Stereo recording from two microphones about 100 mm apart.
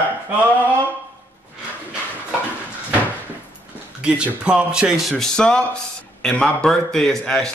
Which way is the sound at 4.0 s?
10° right (ahead or behind).